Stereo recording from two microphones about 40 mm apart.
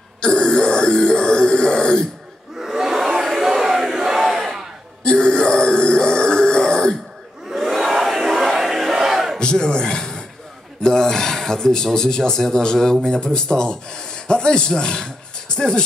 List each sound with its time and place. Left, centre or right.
0.2 s a sound: left
2.6 s battle cry: centre
5.0 s grunt: left
7.4 s crowd: centre
9.4 s a sound: left
10.8 s speech: centre